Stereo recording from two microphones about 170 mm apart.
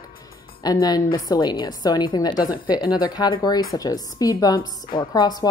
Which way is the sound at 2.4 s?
60° left (ahead or behind).